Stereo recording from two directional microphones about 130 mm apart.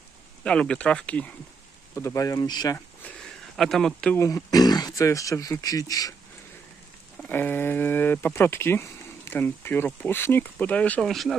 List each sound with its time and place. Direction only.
0.4 s speech: 5° left (ahead or behind)
2.0 s speech: 25° left (ahead or behind)
3.0 s a sound: 5° left (ahead or behind)
4.2 s speech: 25° left (ahead or behind)
7.2 s speech: 15° left (ahead or behind)